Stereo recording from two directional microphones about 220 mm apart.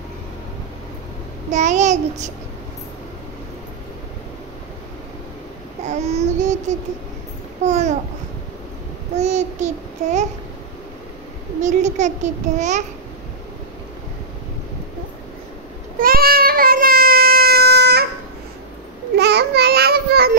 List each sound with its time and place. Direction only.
1.5 s babbling: 35° right (ahead or behind)
5.9 s babbling: 30° right (ahead or behind)
7.6 s babbling: 30° right (ahead or behind)
9.1 s babbling: 30° right (ahead or behind)
11.6 s babbling: 35° right (ahead or behind)
16.0 s baby cry: 40° right (ahead or behind)
19.1 s a sound: 50° right (ahead or behind)